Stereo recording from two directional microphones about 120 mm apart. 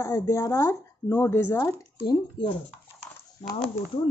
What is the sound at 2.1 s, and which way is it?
Speech, 40° left (ahead or behind).